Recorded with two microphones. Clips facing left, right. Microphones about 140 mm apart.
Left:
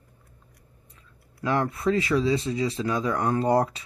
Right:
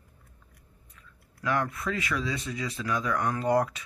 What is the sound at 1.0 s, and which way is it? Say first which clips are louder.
Speech: left 7 dB; 30° left (ahead or behind).